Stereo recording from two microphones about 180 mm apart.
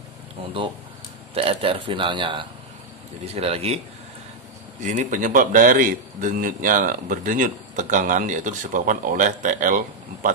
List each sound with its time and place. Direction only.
1.3 s a man's voice: 30° right (ahead or behind); by 10.3 s 45° right (ahead or behind)